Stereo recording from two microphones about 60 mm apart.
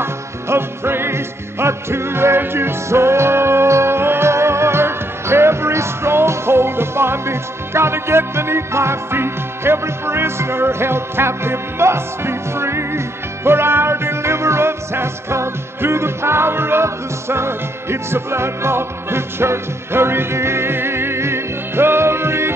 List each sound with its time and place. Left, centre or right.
0.0 s music: right